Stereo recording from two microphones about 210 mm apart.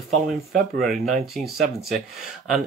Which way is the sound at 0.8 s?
Centre (ahead or behind).